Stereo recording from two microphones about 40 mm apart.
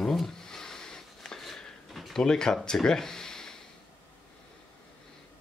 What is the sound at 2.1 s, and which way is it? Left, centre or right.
Speech, centre.